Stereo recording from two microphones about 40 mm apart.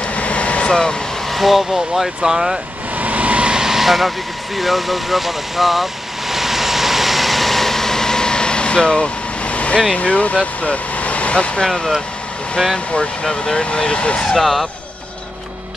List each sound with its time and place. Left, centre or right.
0.0 s vehicle: left
1.3 s speech: centre
3.0 s vehicle: right
3.6 s vehicle: centre; by 9.1 s left
9.4 s vehicle: left
9.9 s speech: left
11.6 s speech: centre
12.7 s speech: left
14.4 s speech: centre